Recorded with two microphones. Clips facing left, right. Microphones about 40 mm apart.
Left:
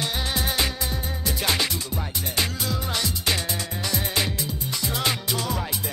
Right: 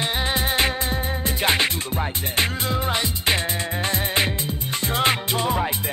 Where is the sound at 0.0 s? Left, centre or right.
Right.